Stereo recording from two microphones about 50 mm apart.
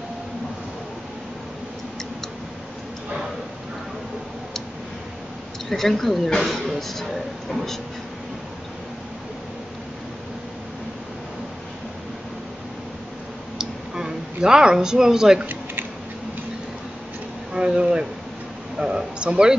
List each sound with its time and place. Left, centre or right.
5.7 s speech: centre
13.6 s a sound: centre
17.5 s speech: centre